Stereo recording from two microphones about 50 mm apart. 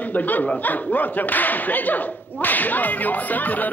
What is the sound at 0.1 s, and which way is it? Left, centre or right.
Speech, left.